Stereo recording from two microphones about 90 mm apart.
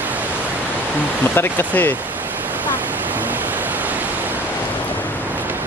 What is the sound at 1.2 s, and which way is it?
Speech, 25° left (ahead or behind).